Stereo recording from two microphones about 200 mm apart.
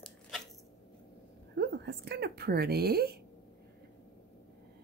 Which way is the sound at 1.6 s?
55° right (ahead or behind).